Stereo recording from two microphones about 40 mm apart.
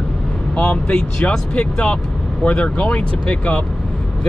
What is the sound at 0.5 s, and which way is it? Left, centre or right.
Speech, left.